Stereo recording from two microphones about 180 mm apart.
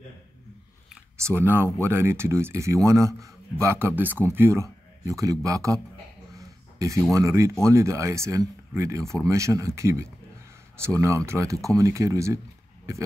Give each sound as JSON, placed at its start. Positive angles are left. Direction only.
{"t": 1.2, "sound": "a man's voice", "side_deg": -10}
{"t": 6.3, "sound": "a sound", "side_deg": -15}
{"t": 7.2, "sound": "speech", "side_deg": -15}